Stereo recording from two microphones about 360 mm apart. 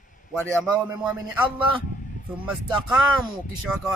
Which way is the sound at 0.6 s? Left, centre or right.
Centre.